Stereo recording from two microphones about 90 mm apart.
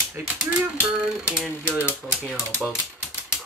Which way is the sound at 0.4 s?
10° right (ahead or behind).